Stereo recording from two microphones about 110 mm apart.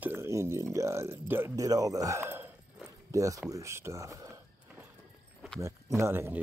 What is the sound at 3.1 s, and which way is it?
Speech, 30° right (ahead or behind).